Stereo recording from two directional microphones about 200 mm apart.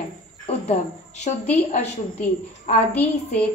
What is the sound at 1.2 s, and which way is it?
Speech, 35° left (ahead or behind).